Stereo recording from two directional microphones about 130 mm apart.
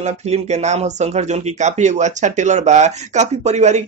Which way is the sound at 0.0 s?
60° right (ahead or behind).